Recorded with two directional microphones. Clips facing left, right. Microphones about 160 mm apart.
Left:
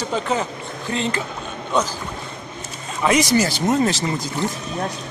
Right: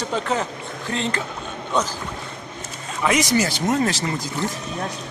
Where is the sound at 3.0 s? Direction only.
35° left (ahead or behind).